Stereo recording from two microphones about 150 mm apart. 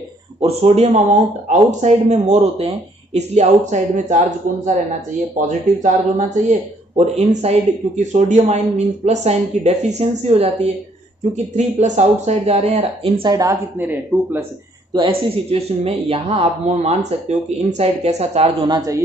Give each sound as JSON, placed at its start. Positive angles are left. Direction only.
{"t": 0.4, "sound": "speech", "side_deg": -40}
{"t": 5.5, "sound": "speech", "side_deg": -55}
{"t": 13.4, "sound": "speech", "side_deg": -15}
{"t": 14.9, "sound": "speech", "side_deg": -35}
{"t": 18.7, "sound": "a man's voice", "side_deg": -25}